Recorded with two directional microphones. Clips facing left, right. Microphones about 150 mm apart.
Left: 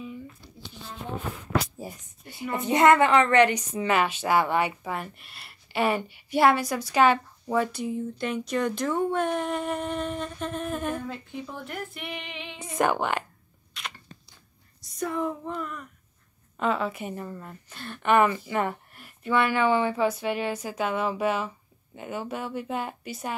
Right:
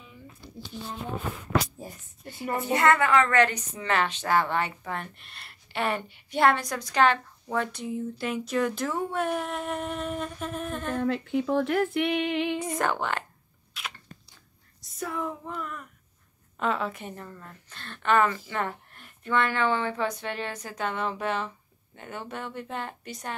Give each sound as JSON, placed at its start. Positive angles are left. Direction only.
{"t": 1.8, "sound": "a woman's voice", "side_deg": 15}
{"t": 11.0, "sound": "speech", "side_deg": -70}
{"t": 12.7, "sound": "speech", "side_deg": 15}
{"t": 13.7, "sound": "a sound", "side_deg": -5}
{"t": 14.8, "sound": "speech", "side_deg": 0}